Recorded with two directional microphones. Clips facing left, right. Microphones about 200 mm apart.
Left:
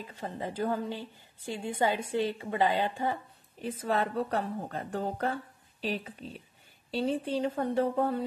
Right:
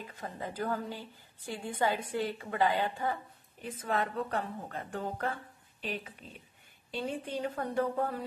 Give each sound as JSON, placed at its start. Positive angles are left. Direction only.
{"t": 0.1, "sound": "a woman's voice", "side_deg": 25}